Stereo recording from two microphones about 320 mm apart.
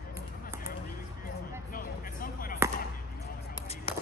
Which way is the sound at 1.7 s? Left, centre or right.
Left.